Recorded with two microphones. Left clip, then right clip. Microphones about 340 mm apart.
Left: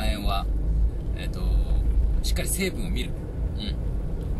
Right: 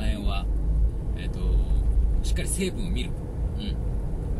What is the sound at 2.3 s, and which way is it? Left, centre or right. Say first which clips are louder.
Speech: left 1 dB; left.